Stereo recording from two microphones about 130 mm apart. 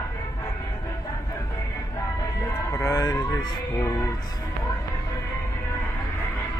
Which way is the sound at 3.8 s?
25° left (ahead or behind).